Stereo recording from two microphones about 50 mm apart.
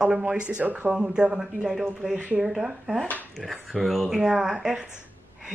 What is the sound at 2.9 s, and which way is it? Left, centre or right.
Speech, right.